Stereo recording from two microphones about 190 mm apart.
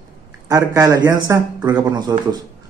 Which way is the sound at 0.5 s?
20° right (ahead or behind).